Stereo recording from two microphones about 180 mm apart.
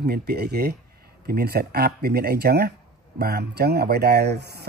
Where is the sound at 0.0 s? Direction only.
65° right (ahead or behind).